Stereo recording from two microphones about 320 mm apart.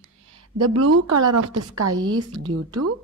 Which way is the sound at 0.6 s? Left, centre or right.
Right.